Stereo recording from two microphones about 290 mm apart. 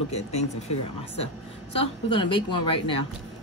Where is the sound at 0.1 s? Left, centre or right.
Left.